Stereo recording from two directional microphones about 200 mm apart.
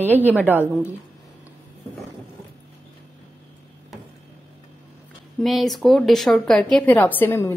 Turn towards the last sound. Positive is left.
turn(degrees=10)  # may be behind; listen again after turning